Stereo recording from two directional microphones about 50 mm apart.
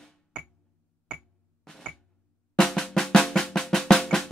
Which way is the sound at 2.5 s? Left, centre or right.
Centre.